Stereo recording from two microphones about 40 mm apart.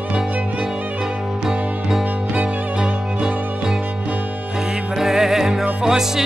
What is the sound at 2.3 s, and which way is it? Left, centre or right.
Music, right.